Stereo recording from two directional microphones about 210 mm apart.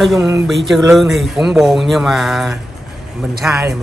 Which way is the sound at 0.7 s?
Centre (ahead or behind).